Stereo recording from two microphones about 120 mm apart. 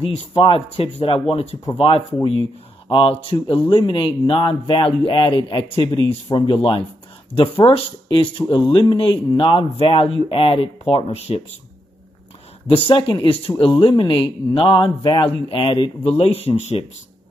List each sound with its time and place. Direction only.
0.0 s speech: 55° left (ahead or behind)
1.3 s speech: 60° left (ahead or behind)
1.7 s speech: 50° left (ahead or behind)
12.6 s speech: 50° left (ahead or behind)